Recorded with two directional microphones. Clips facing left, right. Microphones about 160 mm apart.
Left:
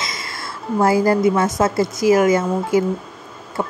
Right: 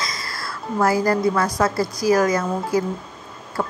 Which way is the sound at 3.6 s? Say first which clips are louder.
Left 1 dB; 20° left (ahead or behind).